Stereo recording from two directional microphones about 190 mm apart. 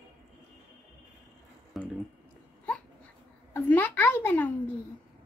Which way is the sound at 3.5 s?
10° left (ahead or behind).